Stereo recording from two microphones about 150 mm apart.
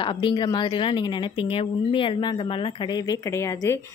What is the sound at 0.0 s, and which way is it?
A woman's voice, 35° left (ahead or behind).